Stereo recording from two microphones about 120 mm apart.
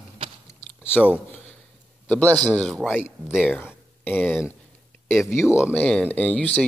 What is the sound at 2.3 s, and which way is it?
Speech, centre (ahead or behind).